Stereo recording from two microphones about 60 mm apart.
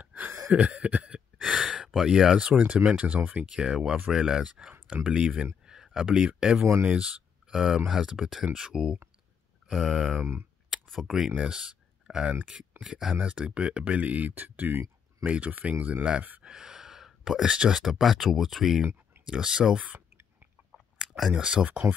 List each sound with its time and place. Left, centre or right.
0.0 s a sound: right
0.5 s speech: centre
1.0 s speech: centre; by 3.4 s right
3.4 s speech: centre
6.6 s speech: right
6.9 s a sound: centre
7.5 s speech: centre
11.2 s speech: centre; by 14.9 s right
15.2 s speech: right
16.4 s a sound: centre
17.5 s speech: centre
19.2 s speech: centre
21.3 s speech: centre